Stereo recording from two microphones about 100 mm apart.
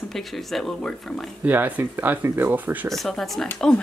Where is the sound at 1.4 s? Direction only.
15° right (ahead or behind).